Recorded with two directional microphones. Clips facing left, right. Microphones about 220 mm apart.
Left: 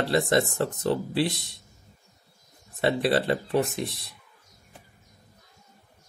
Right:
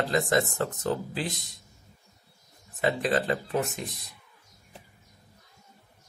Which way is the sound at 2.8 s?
30° left (ahead or behind).